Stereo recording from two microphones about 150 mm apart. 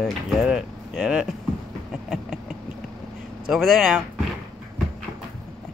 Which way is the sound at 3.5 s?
Centre (ahead or behind).